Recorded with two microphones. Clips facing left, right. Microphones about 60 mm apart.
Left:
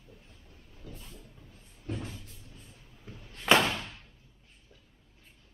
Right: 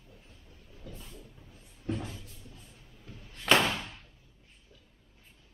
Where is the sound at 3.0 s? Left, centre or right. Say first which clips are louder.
Left 2 dB; centre.